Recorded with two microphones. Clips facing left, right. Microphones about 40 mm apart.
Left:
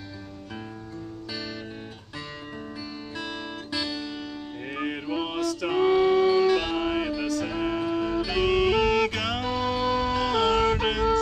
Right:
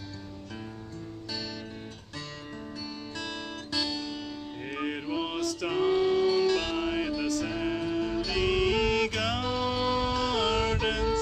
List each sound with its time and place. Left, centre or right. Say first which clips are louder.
3.2 s guitar: left 3 dB; centre
4.6 s music: left 2 dB; centre
5.8 s music: left 5 dB; left